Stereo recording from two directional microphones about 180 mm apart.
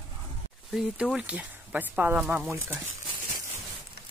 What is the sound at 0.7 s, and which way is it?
Speech, 5° right (ahead or behind).